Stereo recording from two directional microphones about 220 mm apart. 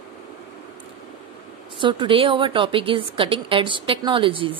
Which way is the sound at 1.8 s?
20° right (ahead or behind).